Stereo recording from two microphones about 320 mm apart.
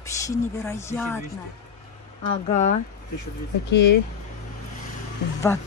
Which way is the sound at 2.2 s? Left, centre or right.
Centre.